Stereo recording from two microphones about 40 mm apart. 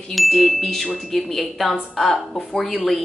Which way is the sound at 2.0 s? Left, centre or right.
Left.